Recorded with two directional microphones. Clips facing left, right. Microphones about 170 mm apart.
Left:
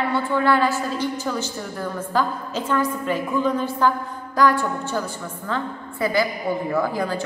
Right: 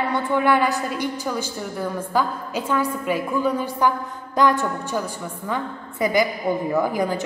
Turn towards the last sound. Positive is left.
turn(degrees=-15)  # may be behind; listen again after turning